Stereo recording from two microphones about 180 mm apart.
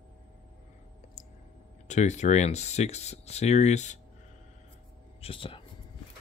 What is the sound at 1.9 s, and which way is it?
Speech, 40° left (ahead or behind).